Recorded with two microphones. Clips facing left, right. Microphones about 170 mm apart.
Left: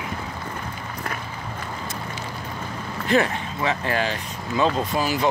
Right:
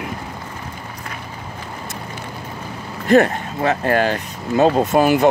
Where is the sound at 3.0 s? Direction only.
45° right (ahead or behind).